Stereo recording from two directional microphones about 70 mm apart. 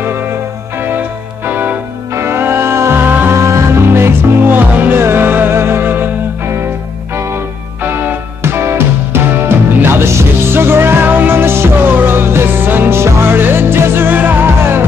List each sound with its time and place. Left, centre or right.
0.0 s music: right
2.1 s music: right
3.3 s music: right
7.8 s music: right